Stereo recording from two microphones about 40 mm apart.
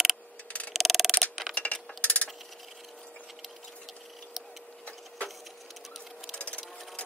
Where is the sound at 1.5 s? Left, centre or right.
Left.